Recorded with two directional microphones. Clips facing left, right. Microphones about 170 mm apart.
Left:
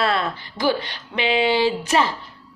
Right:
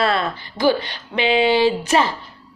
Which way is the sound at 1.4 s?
15° right (ahead or behind).